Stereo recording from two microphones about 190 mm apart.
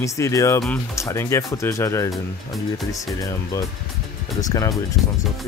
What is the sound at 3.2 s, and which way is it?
Speech, 15° left (ahead or behind).